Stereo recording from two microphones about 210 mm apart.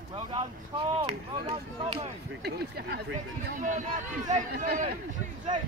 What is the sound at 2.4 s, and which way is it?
Speech, 50° right (ahead or behind).